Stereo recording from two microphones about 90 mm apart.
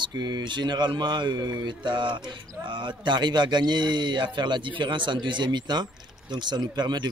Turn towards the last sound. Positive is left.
turn(degrees=-55)  # may be behind; listen again after turning